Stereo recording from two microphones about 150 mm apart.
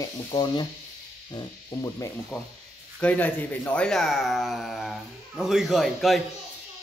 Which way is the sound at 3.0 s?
10° left (ahead or behind).